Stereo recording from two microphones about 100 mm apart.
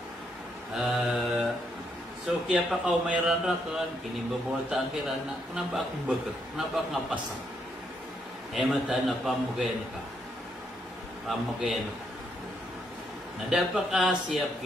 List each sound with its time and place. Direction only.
0.7 s mantra: 5° right (ahead or behind)
2.2 s a man's voice: 5° right (ahead or behind)
4.6 s a man's voice: 5° right (ahead or behind)
8.5 s a man's voice: 5° right (ahead or behind)
11.2 s a man's voice: centre (ahead or behind)
13.5 s a man's voice: 5° right (ahead or behind)